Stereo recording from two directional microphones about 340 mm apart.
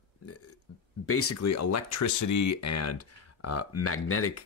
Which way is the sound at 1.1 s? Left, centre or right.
Left.